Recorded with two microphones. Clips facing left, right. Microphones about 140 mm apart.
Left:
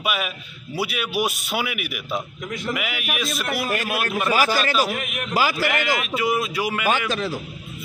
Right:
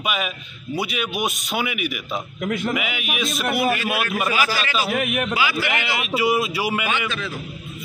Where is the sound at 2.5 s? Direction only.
65° right (ahead or behind).